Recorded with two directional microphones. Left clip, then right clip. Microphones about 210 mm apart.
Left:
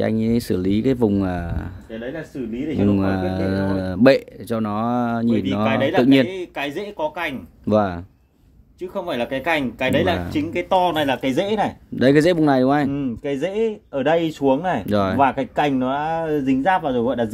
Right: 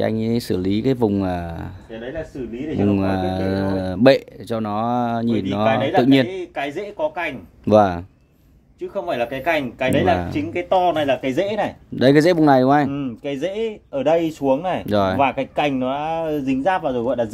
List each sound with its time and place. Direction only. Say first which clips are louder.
0.0 s speech: even; centre (ahead or behind)
2.8 s speech: right 1 dB; centre (ahead or behind)
6.2 s speech: even; 45° left (ahead or behind)
7.6 s speech: right 5 dB; 15° right (ahead or behind)
8.9 s speech: right 1 dB; 45° left (ahead or behind)
12.0 s speech: right 1 dB; centre (ahead or behind)
12.9 s speech: left 2 dB; 35° left (ahead or behind)
14.9 s speech: right 4 dB; centre (ahead or behind)
15.1 s speech: left 1 dB; 35° left (ahead or behind)